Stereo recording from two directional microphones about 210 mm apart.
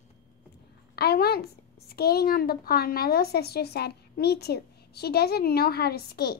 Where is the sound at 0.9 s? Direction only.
50° left (ahead or behind).